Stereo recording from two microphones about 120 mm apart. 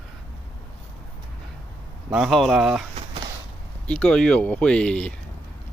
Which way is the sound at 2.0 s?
5° right (ahead or behind).